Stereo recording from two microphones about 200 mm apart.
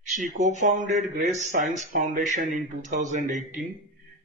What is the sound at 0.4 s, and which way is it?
Speech, 35° right (ahead or behind).